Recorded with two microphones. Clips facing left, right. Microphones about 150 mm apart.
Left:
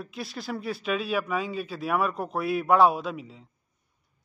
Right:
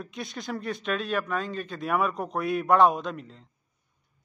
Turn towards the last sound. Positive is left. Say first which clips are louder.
# left 1 dB
turn(degrees=5)  # may be behind; listen again after turning